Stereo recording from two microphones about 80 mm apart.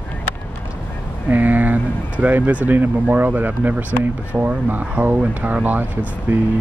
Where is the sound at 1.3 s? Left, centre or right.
Right.